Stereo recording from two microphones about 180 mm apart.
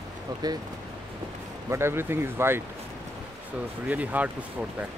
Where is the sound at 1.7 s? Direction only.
15° right (ahead or behind).